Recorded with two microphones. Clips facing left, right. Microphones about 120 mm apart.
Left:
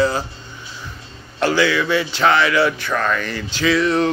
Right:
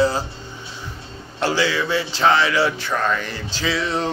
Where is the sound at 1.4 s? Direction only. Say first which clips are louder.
Left 3 dB; 30° right (ahead or behind).